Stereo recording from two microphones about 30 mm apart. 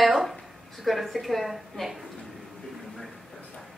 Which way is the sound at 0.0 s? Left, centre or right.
Centre.